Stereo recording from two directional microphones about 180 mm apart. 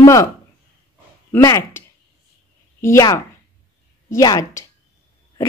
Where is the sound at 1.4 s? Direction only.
15° left (ahead or behind).